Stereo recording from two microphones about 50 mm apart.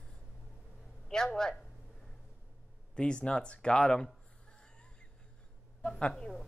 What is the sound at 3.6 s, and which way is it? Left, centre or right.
Cat, centre.